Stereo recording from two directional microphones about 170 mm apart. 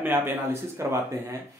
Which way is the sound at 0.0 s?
10° right (ahead or behind).